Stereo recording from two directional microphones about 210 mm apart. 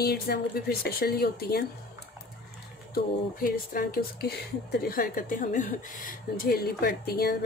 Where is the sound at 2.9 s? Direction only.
45° left (ahead or behind).